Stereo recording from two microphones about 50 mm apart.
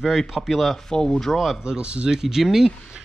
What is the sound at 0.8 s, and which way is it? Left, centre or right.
Speech, centre.